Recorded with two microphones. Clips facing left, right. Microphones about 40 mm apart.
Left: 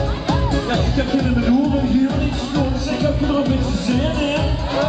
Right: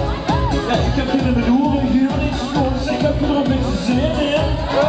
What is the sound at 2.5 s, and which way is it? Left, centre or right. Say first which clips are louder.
Music: right 2 dB; centre.